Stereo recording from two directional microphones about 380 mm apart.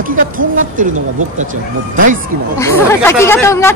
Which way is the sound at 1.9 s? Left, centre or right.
Right.